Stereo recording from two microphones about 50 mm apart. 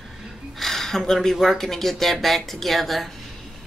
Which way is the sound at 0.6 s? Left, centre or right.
Centre.